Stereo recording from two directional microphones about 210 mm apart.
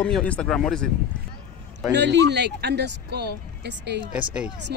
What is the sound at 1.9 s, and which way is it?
Speech, 55° right (ahead or behind).